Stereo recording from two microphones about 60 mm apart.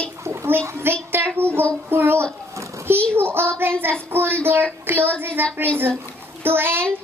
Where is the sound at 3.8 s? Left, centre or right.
Right.